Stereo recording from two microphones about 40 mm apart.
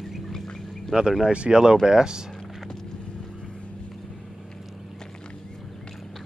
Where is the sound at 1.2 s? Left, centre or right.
Right.